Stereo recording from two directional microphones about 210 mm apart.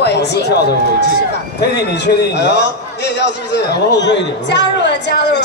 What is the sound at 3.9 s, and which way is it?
Speech, 55° left (ahead or behind).